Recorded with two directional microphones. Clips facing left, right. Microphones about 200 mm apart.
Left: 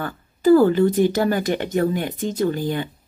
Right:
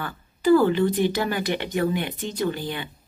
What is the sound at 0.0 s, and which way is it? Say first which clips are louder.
Speech: left 5 dB; 40° left (ahead or behind).